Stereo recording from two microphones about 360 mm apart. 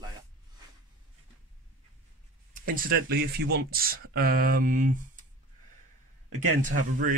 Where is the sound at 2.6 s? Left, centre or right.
Right.